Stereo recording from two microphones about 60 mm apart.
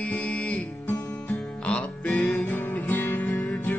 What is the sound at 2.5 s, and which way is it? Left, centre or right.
Music, left.